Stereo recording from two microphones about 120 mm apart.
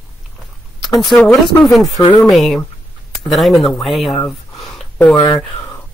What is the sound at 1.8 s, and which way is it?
Speech, 30° left (ahead or behind).